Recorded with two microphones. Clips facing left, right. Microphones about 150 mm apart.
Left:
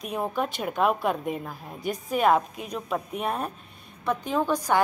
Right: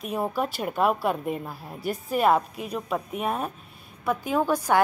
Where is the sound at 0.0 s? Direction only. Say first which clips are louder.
Right 1 dB; 5° right (ahead or behind).